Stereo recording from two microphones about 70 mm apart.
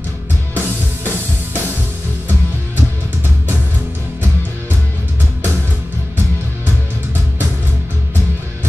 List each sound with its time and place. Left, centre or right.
0.6 s music: right